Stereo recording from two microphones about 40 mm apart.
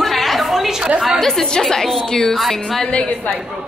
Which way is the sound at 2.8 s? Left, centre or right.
Left.